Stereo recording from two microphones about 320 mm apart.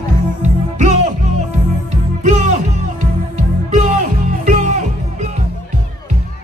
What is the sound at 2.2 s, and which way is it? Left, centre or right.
Music, right.